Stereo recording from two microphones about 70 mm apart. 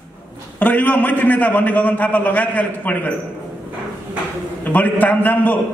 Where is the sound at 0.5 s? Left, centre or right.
Left.